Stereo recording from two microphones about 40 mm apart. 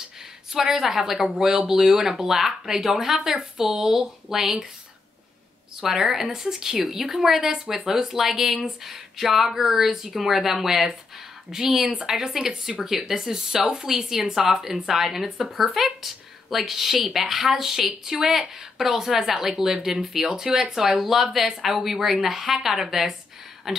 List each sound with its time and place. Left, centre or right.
0.5 s a woman's voice: centre
5.8 s a woman's voice: centre
11.8 s a woman's voice: right
12.1 s a woman's voice: centre